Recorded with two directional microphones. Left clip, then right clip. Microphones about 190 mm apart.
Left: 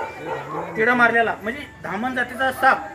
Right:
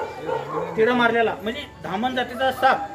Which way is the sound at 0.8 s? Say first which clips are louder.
Left 2 dB; 10° right (ahead or behind).